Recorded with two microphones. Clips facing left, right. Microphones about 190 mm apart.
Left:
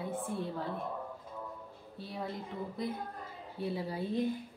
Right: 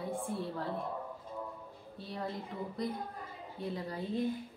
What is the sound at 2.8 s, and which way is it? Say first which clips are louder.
A woman's voice: right 1 dB; 5° left (ahead or behind).